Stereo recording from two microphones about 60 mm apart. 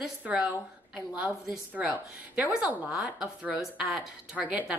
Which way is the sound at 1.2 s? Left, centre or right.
Centre.